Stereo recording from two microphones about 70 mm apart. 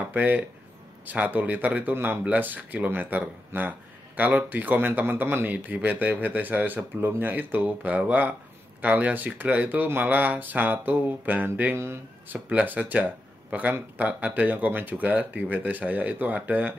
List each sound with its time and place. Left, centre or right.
0.1 s speech: right
12.4 s speech: centre